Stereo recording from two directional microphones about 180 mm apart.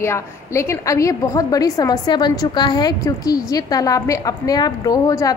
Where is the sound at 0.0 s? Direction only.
15° left (ahead or behind).